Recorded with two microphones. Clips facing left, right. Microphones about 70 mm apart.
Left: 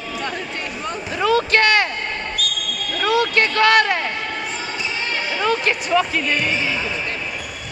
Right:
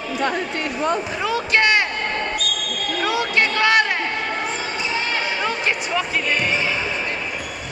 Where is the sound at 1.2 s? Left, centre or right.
Centre.